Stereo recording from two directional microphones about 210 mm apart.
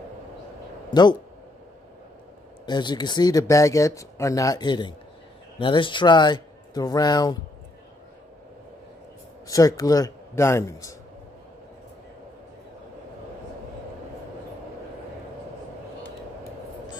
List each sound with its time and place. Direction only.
0.8 s speech: 20° left (ahead or behind)
2.6 s speech: 20° left (ahead or behind)
9.5 s speech: 15° left (ahead or behind)